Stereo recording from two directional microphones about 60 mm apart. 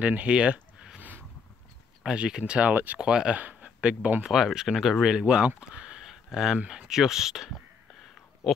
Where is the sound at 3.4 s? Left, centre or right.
Centre.